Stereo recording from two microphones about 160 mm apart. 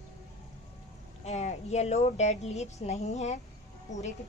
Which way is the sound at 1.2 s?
45° left (ahead or behind).